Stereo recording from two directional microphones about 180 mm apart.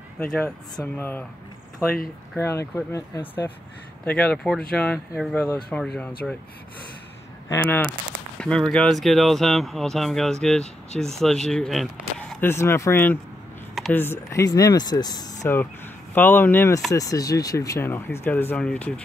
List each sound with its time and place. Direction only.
0.2 s speech: 10° left (ahead or behind)
2.4 s speech: 15° left (ahead or behind)
7.4 s speech: 15° left (ahead or behind)